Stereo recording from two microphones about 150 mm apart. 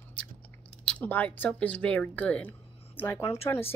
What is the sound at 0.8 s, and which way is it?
Speech, 10° left (ahead or behind).